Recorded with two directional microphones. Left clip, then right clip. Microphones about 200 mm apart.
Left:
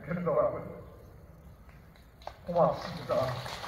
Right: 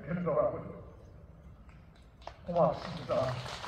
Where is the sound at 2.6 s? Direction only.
5° left (ahead or behind).